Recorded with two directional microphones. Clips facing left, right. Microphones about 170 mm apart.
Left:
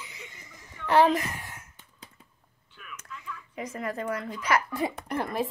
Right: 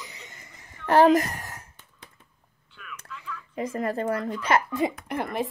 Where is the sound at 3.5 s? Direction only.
30° right (ahead or behind).